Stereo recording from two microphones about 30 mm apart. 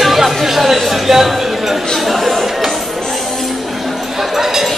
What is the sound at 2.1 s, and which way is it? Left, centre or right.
Chatter, centre.